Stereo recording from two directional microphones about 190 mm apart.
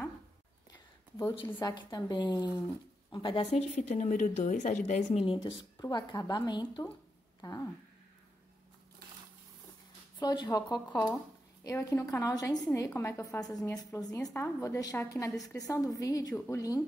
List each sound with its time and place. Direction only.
1.3 s speech: 25° left (ahead or behind)
10.1 s a woman's voice: 20° left (ahead or behind)